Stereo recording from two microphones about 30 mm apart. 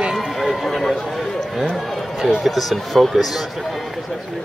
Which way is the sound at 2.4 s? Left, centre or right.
Centre.